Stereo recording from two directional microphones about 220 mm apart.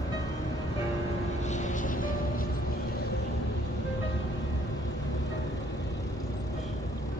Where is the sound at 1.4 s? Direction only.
35° left (ahead or behind).